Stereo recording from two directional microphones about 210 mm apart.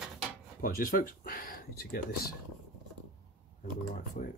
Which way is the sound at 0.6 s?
45° left (ahead or behind).